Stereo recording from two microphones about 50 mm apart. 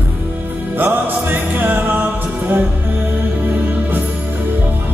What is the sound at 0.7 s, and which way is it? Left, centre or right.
Music, right.